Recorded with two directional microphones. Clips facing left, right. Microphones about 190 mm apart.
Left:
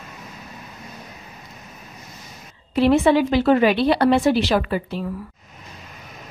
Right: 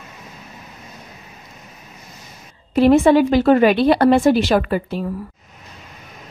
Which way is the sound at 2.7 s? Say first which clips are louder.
Right 4 dB; 45° right (ahead or behind).